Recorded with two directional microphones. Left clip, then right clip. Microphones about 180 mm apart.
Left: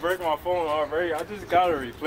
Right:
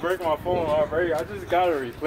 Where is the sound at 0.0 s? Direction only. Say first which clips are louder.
Right 1 dB; 45° left (ahead or behind).